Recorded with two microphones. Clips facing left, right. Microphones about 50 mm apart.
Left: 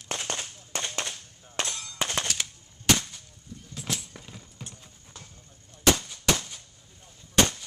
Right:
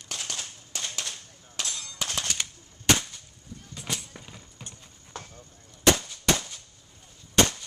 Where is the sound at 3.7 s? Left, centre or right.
Centre.